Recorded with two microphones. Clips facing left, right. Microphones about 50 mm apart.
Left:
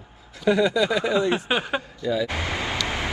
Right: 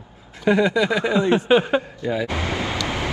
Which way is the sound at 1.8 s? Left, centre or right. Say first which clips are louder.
Right 1 dB; right.